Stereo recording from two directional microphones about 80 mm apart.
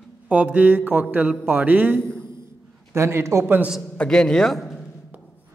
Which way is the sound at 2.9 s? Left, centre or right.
Right.